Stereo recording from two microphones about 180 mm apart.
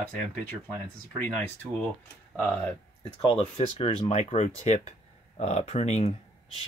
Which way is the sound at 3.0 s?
30° left (ahead or behind).